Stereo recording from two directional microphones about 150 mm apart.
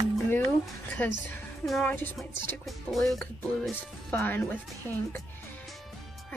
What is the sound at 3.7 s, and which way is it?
A woman's voice, 15° left (ahead or behind).